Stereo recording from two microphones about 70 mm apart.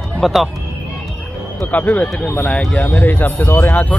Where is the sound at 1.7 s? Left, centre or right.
Left.